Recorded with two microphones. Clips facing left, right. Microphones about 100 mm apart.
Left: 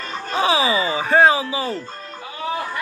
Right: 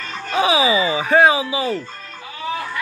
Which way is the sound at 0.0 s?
15° left (ahead or behind).